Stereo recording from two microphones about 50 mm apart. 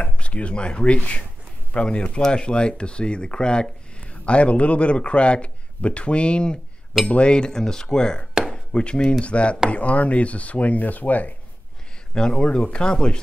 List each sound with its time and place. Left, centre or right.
0.0 s a man's voice: left
7.1 s cutlery: left
8.5 s chopping: centre
9.2 s speech: left
12.1 s speech: centre
12.5 s cutlery: centre